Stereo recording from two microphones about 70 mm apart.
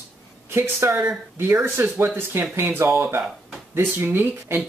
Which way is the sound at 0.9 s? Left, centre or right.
Centre.